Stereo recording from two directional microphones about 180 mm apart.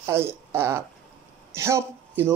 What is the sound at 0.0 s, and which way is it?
Speech, 15° right (ahead or behind).